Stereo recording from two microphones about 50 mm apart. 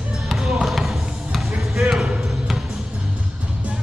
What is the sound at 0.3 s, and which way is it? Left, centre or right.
Basketball bounce, centre.